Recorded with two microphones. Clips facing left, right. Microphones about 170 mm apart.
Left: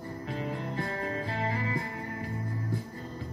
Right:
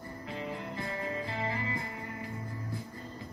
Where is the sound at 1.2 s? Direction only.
40° left (ahead or behind).